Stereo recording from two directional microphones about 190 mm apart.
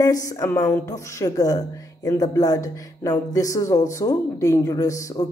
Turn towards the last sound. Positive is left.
turn(degrees=15)  # may be behind; listen again after turning